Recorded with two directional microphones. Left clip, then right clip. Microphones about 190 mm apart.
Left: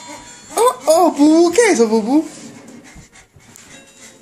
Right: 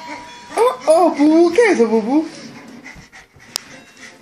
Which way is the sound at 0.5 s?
10° left (ahead or behind).